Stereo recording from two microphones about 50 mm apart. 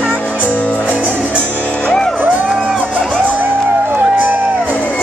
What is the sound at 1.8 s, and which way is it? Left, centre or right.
Music, centre.